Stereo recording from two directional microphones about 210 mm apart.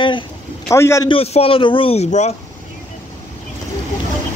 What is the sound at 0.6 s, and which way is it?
Speech, 15° left (ahead or behind).